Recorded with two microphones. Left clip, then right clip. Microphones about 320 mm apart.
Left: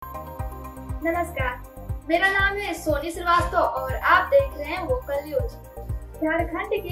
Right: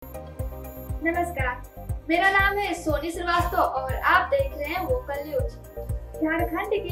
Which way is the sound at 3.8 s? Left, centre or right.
Centre.